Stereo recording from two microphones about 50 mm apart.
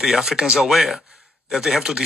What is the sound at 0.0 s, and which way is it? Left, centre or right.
Speech, centre.